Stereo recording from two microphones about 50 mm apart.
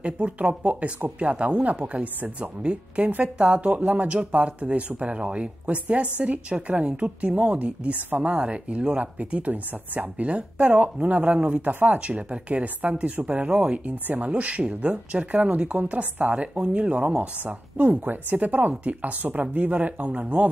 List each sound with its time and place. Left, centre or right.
0.0 s a woman's voice: right
11.6 s a woman's voice: right
16.5 s a woman's voice: right
17.7 s speech: right